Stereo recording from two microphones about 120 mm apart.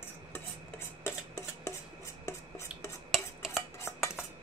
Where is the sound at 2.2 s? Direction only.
25° left (ahead or behind).